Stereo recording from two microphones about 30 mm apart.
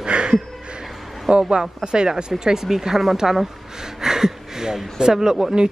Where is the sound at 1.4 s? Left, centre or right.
Right.